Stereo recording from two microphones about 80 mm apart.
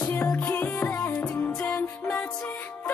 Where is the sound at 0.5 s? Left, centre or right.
Left.